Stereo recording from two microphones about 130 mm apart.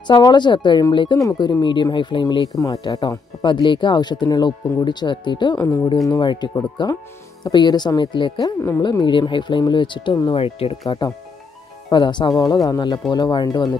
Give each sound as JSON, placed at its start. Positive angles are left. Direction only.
{"t": 0.0, "sound": "speech", "side_deg": 35}
{"t": 2.5, "sound": "speech", "side_deg": 25}
{"t": 11.9, "sound": "speech", "side_deg": 35}